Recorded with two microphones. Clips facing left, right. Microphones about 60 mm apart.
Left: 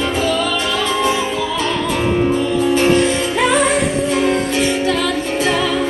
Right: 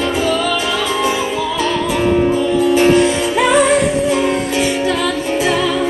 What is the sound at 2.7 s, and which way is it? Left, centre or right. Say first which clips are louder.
Music: right 2 dB; centre.